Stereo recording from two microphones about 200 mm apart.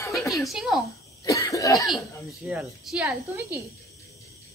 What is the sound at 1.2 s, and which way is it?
Cough, 15° left (ahead or behind).